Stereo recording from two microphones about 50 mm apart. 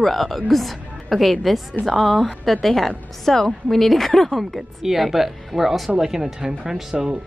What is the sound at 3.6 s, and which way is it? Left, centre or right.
A woman's voice, centre.